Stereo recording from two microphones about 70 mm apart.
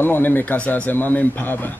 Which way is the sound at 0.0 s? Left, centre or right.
Left.